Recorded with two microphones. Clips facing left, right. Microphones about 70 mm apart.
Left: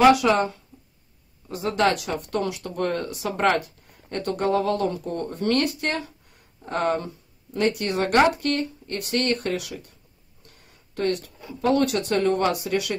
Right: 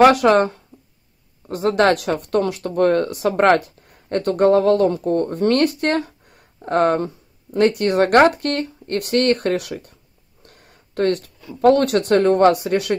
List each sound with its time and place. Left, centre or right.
0.0 s speech: right
10.4 s a sound: right
11.6 s speech: right